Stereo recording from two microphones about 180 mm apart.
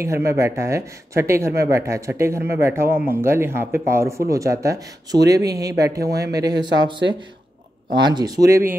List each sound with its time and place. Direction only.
0.0 s speech: 15° right (ahead or behind)